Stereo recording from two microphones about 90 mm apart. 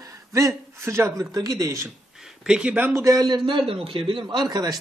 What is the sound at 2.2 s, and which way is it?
Speech, 5° right (ahead or behind).